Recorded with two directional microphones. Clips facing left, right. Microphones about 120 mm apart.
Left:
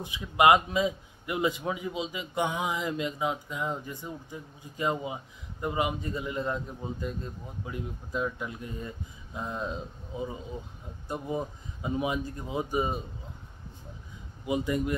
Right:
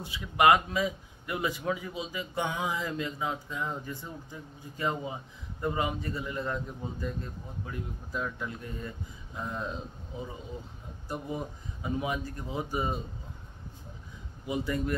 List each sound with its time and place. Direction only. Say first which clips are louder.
0.0 s a man's voice: left 1 dB; 20° left (ahead or behind)
14.4 s a man's voice: left 3 dB; 20° left (ahead or behind)